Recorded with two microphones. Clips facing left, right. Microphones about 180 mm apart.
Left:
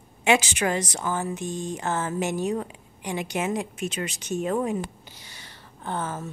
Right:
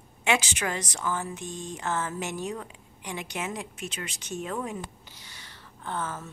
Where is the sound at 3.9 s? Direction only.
15° left (ahead or behind).